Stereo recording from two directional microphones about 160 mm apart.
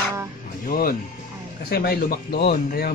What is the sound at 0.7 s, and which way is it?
Speech, 65° left (ahead or behind).